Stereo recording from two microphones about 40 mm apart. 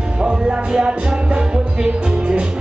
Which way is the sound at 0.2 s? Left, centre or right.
Right.